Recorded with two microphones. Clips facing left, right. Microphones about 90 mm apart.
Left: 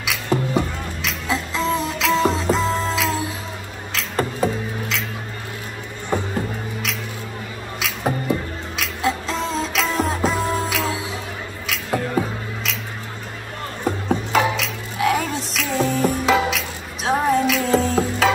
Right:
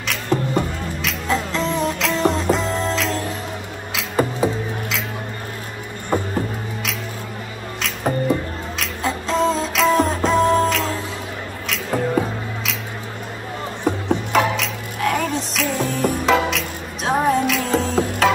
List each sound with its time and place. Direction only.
0.0 s music: 5° left (ahead or behind)
3.9 s music: 10° right (ahead or behind)
7.8 s music: centre (ahead or behind)
11.6 s a sound: centre (ahead or behind)
14.3 s music: centre (ahead or behind)